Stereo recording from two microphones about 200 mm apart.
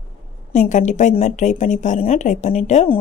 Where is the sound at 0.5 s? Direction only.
35° left (ahead or behind).